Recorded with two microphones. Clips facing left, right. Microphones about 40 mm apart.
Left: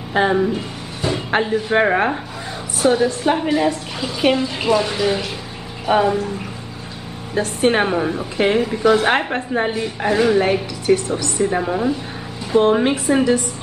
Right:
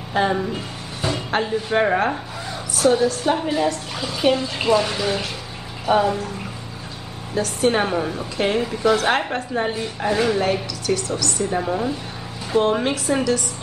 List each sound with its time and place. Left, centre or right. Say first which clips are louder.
0.1 s a woman's voice: left 4 dB; centre
3.4 s a woman's voice: left 3 dB; centre
4.6 s a woman's voice: left 1 dB; centre
7.3 s speech: left 2 dB; left
7.8 s a woman's voice: left 3 dB; centre
9.7 s a woman's voice: left 3 dB; centre
10.4 s a woman's voice: left 3 dB; left
11.6 s a woman's voice: left 3 dB; centre